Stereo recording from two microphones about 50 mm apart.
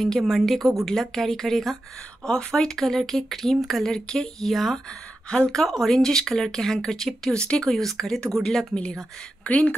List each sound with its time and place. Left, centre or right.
0.0 s speech: centre
9.4 s speech: left